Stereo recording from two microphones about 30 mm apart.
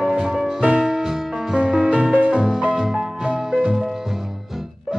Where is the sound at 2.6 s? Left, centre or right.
Right.